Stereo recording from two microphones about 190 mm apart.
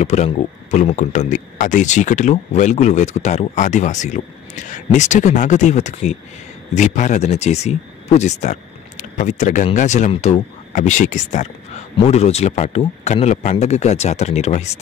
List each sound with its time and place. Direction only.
0.0 s speech: 35° left (ahead or behind)